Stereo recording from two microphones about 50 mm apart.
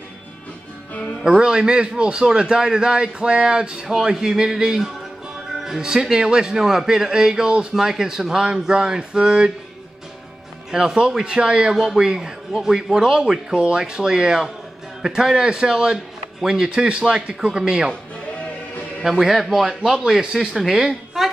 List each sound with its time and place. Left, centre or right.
1.2 s speech: centre
3.9 s speech: centre
10.7 s speech: centre
19.0 s a man's voice: centre
19.8 s speech: centre